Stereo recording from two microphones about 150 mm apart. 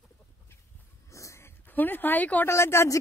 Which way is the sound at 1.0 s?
20° left (ahead or behind).